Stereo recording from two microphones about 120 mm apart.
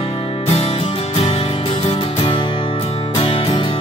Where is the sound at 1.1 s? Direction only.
60° left (ahead or behind).